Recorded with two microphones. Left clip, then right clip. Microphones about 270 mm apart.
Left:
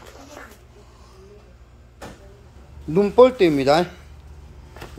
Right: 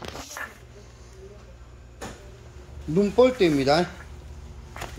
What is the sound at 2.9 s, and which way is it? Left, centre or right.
Speech, centre.